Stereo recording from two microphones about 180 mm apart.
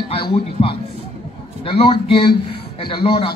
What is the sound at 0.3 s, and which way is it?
A man's voice, 30° left (ahead or behind).